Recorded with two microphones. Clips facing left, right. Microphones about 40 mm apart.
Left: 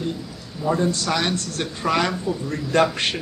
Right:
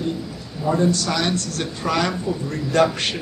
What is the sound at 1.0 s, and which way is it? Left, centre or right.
A woman's voice, centre.